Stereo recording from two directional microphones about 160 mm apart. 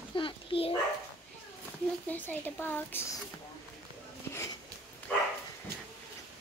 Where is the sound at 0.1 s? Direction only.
35° left (ahead or behind).